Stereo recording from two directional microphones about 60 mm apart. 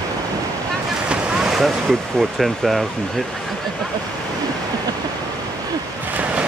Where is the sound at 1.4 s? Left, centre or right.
Centre.